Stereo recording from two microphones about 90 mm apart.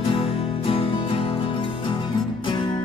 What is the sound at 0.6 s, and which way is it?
Music, 90° left.